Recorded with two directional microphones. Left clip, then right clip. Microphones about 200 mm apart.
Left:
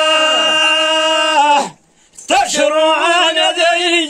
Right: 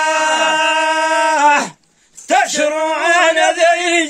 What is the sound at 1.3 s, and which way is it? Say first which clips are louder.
Dog: left 1 dB; 15° right (ahead or behind).